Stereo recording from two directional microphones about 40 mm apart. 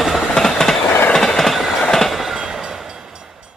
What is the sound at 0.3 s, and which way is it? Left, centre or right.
Train, centre.